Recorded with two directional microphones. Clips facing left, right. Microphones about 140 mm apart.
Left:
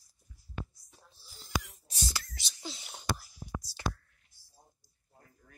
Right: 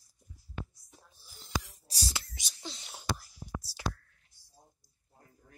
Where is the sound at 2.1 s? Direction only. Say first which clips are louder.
Even; 20° right (ahead or behind).